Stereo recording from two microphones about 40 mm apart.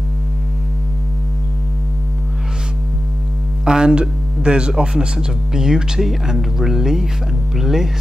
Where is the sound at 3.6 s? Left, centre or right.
Centre.